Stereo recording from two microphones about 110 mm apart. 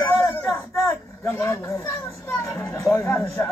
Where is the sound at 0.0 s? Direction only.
30° left (ahead or behind).